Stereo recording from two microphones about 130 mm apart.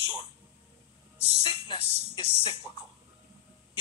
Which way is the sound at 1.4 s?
40° left (ahead or behind).